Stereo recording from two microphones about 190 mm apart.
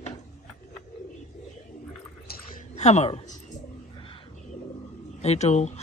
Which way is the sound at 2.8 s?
35° left (ahead or behind).